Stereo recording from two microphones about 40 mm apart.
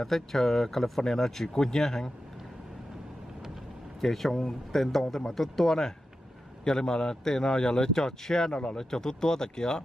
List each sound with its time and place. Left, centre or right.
0.0 s speech: centre
4.0 s speech: centre